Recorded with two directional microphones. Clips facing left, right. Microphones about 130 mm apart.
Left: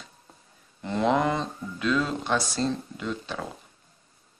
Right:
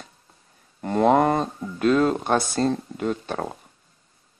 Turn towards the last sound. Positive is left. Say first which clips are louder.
# right 6 dB
turn(degrees=-50)  # may be behind; listen again after turning